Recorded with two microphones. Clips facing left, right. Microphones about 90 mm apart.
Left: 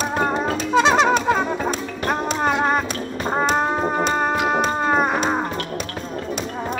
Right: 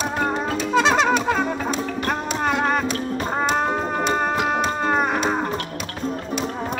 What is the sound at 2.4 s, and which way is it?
Music, 5° left (ahead or behind).